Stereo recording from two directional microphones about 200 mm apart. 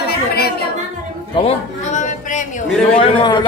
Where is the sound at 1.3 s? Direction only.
35° left (ahead or behind).